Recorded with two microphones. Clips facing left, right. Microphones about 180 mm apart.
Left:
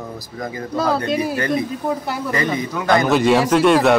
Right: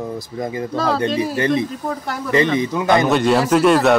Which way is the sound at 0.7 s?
10° left (ahead or behind).